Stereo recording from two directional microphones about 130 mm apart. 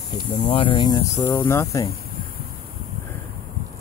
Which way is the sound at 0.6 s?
40° left (ahead or behind).